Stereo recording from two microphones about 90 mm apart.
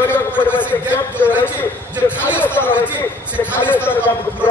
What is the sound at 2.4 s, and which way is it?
Chatter, 25° left (ahead or behind).